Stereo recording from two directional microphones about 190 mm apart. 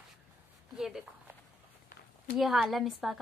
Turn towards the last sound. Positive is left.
turn(degrees=0)  # may be behind; listen again after turning